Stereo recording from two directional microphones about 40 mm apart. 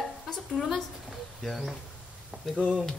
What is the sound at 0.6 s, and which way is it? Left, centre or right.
Speech, centre.